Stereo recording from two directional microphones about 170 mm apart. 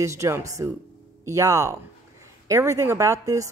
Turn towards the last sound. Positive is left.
turn(degrees=-20)  # may be behind; listen again after turning